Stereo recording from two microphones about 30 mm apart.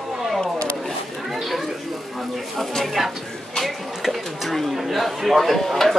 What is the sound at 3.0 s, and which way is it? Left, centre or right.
Speech, centre.